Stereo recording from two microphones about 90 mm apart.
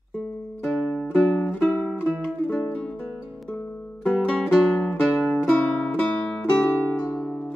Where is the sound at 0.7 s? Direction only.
5° left (ahead or behind).